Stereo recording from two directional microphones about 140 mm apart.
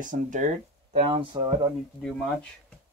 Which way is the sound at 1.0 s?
40° right (ahead or behind).